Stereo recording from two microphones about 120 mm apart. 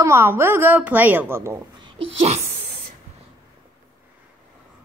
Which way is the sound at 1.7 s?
40° right (ahead or behind).